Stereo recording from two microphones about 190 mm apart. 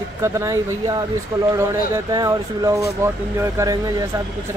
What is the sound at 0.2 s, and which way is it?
Speech, 15° right (ahead or behind).